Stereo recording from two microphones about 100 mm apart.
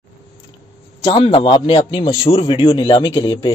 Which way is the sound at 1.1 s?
55° left (ahead or behind).